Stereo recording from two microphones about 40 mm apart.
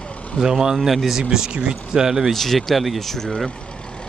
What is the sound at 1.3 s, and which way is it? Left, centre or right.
Speech, centre.